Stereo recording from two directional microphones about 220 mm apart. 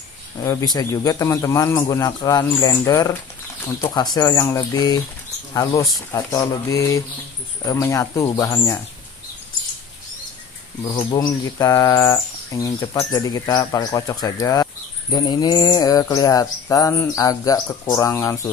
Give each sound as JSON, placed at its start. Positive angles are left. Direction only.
{"t": 0.4, "sound": "speech", "side_deg": 15}
{"t": 10.9, "sound": "speech", "side_deg": 20}